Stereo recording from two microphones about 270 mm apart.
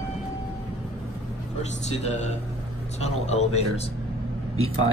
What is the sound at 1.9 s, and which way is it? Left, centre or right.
Speech, left.